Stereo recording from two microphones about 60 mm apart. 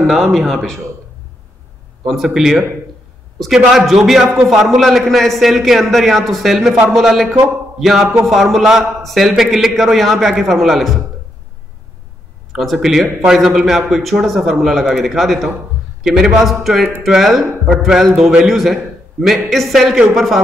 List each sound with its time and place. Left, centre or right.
0.0 s speech: centre
2.0 s speech: centre
12.5 s speech: centre